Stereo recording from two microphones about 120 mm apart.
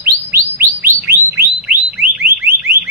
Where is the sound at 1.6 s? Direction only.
15° right (ahead or behind).